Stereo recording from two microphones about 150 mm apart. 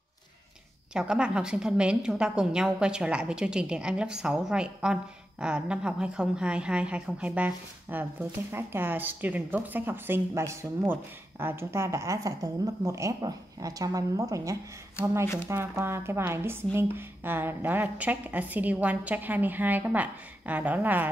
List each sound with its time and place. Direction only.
0.9 s a woman's voice: 5° right (ahead or behind)